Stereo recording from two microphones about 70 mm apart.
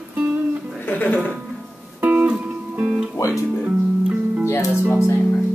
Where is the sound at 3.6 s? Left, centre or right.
Centre.